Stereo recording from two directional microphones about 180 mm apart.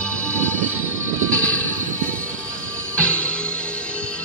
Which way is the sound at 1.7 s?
50° right (ahead or behind).